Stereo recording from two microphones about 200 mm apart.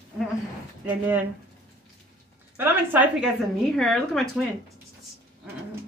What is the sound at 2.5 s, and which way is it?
Speech, 10° right (ahead or behind).